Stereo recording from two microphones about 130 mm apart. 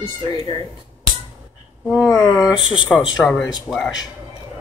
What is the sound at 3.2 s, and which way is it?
Speech, 5° left (ahead or behind).